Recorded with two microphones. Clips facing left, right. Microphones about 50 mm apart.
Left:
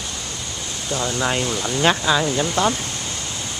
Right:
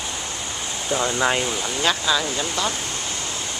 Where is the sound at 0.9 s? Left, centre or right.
Centre.